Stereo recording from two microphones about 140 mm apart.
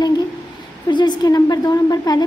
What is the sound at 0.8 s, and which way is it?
A woman's voice, 30° left (ahead or behind).